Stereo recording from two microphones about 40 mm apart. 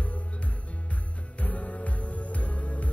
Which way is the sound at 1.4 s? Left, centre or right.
Left.